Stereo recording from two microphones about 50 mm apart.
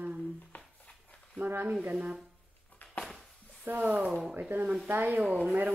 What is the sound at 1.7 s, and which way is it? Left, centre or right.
Speech, right.